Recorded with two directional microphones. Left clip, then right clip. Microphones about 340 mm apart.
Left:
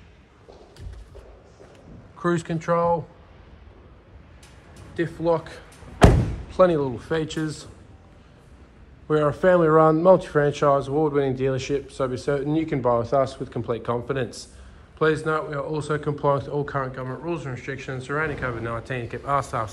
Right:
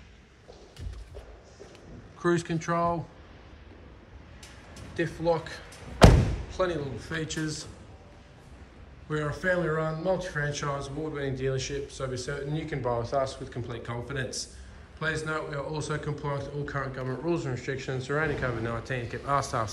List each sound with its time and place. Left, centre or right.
2.1 s speech: centre
4.9 s slam: centre
6.5 s speech: centre
7.0 s speech: centre
9.1 s speech: centre